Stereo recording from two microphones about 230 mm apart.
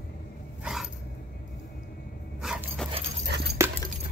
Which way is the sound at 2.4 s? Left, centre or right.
Centre.